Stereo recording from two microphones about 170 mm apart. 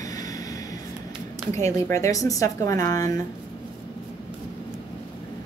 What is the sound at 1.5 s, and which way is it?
Speech, 15° left (ahead or behind).